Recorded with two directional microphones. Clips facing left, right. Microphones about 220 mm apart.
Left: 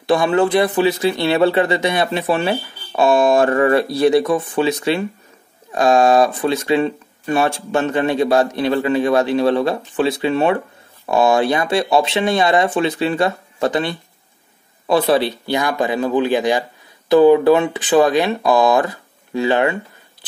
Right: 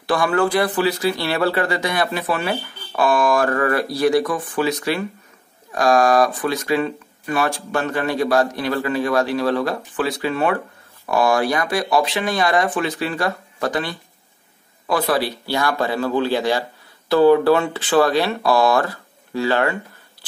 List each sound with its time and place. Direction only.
0.0 s speech: 25° left (ahead or behind)